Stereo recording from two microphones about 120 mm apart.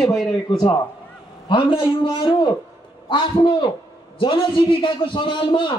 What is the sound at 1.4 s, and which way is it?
A man's voice, 45° left (ahead or behind).